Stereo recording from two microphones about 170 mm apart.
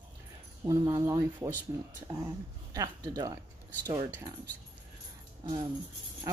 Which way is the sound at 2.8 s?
20° right (ahead or behind).